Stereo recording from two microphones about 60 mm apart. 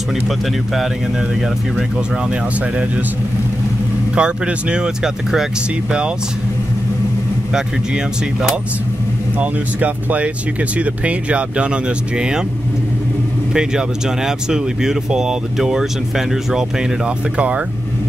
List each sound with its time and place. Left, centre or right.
4.1 s speech: centre
7.5 s speech: centre
9.4 s speech: right
13.5 s speech: centre